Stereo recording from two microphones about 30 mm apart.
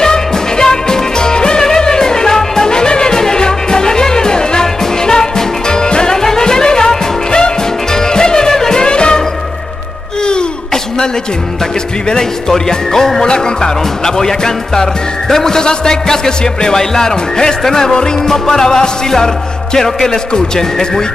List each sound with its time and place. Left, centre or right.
0.0 s music: left
8.8 s music: left
10.2 s a sound: left
12.1 s music: left